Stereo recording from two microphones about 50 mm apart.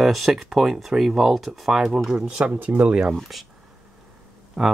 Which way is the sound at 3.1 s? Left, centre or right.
Centre.